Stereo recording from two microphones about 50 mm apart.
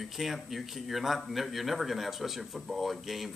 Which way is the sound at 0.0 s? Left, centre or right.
Centre.